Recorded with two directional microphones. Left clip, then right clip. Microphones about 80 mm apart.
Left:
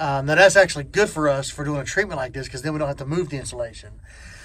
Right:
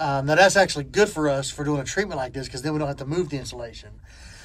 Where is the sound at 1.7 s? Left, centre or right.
Centre.